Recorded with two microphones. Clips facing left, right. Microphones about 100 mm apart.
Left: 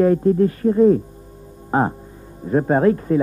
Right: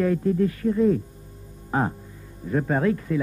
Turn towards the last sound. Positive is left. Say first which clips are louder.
# left 7 dB
turn(degrees=40)  # may be behind; listen again after turning